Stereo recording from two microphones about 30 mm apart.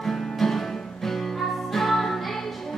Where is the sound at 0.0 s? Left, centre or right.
Centre.